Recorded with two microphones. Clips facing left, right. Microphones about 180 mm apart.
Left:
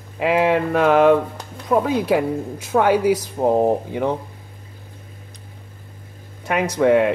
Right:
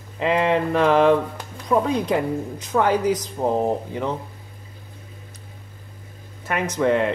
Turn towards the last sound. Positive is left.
turn(degrees=10)  # may be behind; listen again after turning